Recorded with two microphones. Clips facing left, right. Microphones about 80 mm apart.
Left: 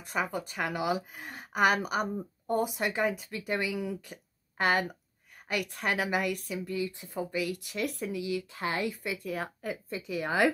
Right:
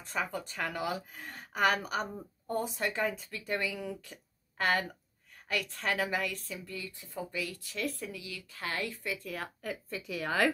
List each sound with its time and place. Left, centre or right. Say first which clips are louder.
0.0 s speech: left 3 dB; centre